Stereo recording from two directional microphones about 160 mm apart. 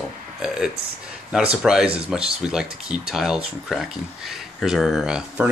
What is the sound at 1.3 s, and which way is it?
Speech, 5° right (ahead or behind).